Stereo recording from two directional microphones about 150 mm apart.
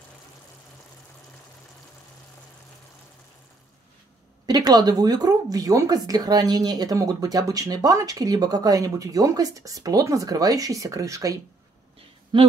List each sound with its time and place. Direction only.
4.5 s speech: 25° right (ahead or behind)